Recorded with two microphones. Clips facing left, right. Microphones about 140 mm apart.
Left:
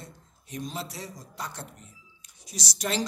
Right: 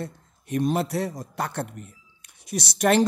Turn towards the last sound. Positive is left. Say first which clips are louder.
# right 10 dB
turn(degrees=-60)  # may be behind; listen again after turning